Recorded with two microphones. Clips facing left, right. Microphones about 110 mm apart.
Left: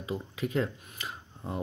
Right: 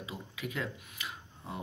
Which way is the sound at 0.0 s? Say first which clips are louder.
Left 7 dB; 40° left (ahead or behind).